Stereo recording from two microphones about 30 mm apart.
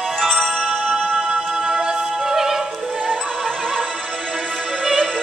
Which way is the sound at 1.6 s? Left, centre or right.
Right.